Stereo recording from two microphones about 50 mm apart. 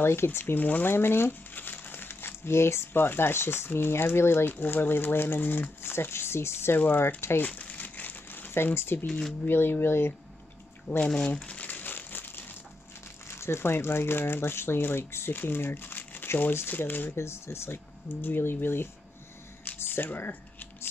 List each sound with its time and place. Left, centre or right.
0.0 s speech: left
0.8 s speech: left
6.9 s speech: left
7.2 s speech: left
7.4 s crumpling: left
9.5 s speech: left
11.0 s crumpling: centre; by 12.5 s left
13.3 s speech: left
17.2 s speech: left
18.0 s speech: left
19.8 s a sound: left